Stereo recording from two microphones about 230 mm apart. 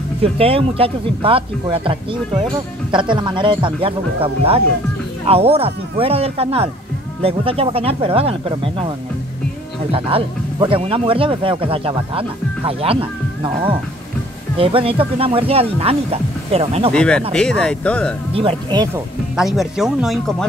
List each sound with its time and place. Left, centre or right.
0.2 s speech: right
16.9 s speech: centre
18.3 s speech: right
19.3 s speech: centre